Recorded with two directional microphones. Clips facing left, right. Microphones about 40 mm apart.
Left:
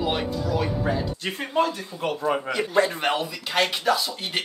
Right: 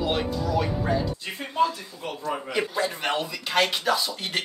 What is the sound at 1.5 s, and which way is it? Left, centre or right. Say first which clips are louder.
Speech: even; left.